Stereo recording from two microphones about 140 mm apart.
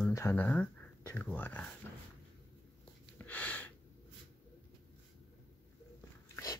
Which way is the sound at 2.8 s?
10° left (ahead or behind).